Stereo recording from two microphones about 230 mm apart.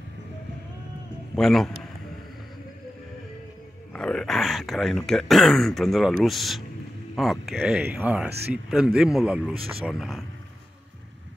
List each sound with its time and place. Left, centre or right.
1.3 s a man's voice: centre
3.9 s speech: centre
8.3 s speech: right
8.6 s speech: centre